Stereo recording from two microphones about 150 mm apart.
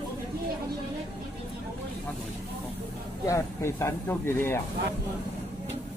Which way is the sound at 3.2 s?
20° left (ahead or behind).